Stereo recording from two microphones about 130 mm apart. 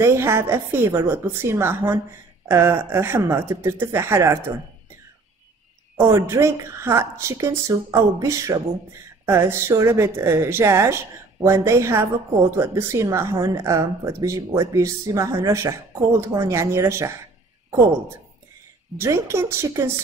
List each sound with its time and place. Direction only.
0.0 s a woman's voice: 20° right (ahead or behind)
5.9 s a woman's voice: 20° right (ahead or behind)
18.9 s a woman's voice: 20° right (ahead or behind)